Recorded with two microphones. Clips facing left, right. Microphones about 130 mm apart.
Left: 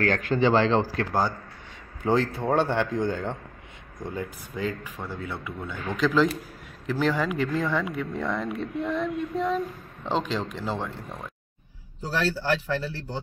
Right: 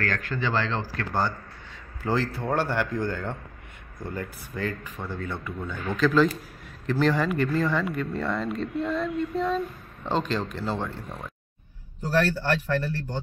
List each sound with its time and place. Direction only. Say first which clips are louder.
0.0 s speech: left 6 dB; 20° left (ahead or behind)
12.4 s speech: right 1 dB; 5° left (ahead or behind)